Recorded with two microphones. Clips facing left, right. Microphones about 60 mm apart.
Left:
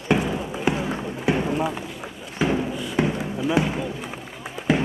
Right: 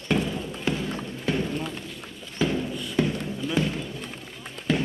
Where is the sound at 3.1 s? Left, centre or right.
Centre.